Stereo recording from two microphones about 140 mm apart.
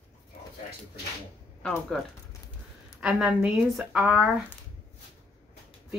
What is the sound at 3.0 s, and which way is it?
Speech, 5° right (ahead or behind).